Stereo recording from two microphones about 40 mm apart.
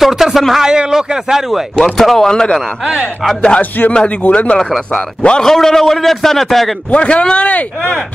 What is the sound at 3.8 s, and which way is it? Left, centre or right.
Speech, left.